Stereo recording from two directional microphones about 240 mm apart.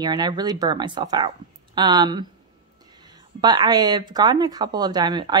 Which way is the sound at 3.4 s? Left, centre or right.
Centre.